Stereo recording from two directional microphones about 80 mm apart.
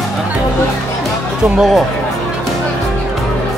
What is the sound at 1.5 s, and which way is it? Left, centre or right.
Speech, centre.